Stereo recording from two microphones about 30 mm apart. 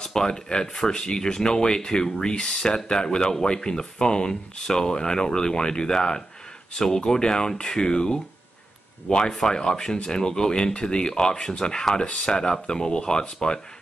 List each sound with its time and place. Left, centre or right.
0.0 s speech: left
9.1 s speech: left
9.5 s speech: left